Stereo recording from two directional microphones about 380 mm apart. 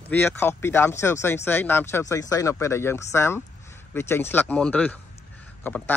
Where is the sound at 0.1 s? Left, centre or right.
Centre.